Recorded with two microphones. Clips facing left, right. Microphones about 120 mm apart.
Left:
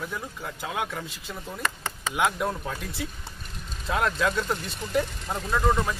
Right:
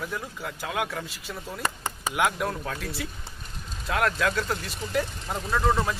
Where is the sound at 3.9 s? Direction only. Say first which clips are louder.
Even; 15° left (ahead or behind).